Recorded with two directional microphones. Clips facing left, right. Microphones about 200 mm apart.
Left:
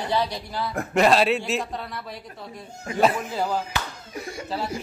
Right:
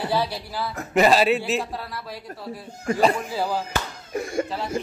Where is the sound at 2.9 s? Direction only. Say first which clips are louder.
Left 1 dB; centre (ahead or behind).